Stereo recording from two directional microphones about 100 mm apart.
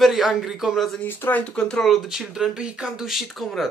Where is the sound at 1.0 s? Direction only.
15° left (ahead or behind).